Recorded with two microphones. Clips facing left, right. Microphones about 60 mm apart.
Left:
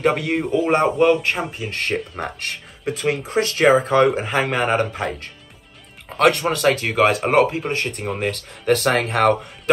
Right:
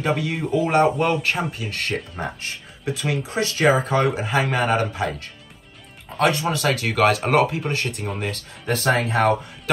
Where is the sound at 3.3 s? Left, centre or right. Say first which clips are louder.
Left 3 dB; left.